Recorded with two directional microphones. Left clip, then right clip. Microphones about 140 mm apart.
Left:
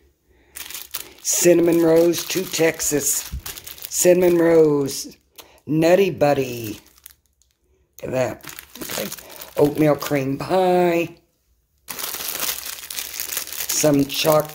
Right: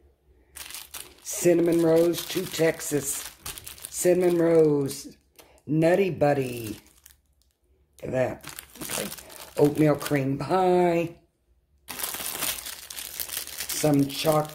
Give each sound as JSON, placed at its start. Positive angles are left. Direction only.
{"t": 0.5, "sound": "a sound", "side_deg": 5}
{"t": 1.2, "sound": "speech", "side_deg": 35}
{"t": 7.0, "sound": "a sound", "side_deg": 10}
{"t": 8.0, "sound": "speech", "side_deg": 30}
{"t": 8.5, "sound": "crumpling", "side_deg": -5}
{"t": 9.6, "sound": "speech", "side_deg": 25}
{"t": 13.7, "sound": "speech", "side_deg": 40}